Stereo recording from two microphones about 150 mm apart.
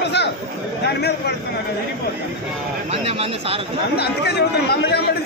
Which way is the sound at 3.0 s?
40° right (ahead or behind).